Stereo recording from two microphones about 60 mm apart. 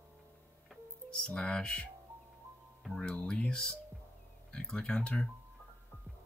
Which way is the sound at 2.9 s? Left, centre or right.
Centre.